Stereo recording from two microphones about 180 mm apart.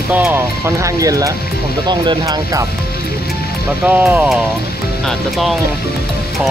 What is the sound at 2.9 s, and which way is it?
Music, 60° left (ahead or behind).